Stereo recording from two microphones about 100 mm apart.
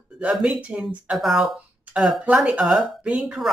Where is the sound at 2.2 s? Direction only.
15° right (ahead or behind).